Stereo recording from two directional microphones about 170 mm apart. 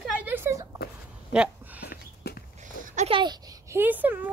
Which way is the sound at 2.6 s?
45° right (ahead or behind).